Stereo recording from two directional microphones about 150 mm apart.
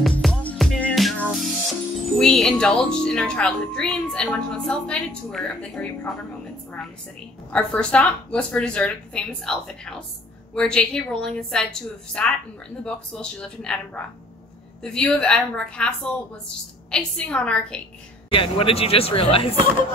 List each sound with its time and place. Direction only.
0.0 s music: 5° left (ahead or behind)
2.1 s speech: 5° left (ahead or behind)
7.5 s a woman's voice: 10° left (ahead or behind)
14.8 s a woman's voice: 5° left (ahead or behind)
18.3 s speech: 35° left (ahead or behind)